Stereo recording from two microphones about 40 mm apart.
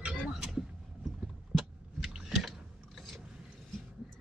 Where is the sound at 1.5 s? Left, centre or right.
Centre.